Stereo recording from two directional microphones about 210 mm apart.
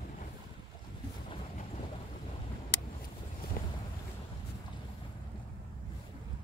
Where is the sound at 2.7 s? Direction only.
45° left (ahead or behind).